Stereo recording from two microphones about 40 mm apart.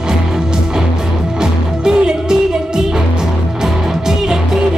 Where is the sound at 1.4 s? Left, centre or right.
Centre.